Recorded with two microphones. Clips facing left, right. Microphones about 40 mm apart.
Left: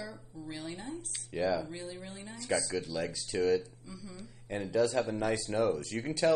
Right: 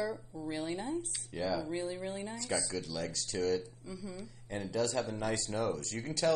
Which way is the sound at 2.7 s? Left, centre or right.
Centre.